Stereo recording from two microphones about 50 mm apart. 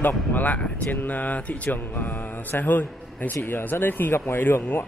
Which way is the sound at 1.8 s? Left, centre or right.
Left.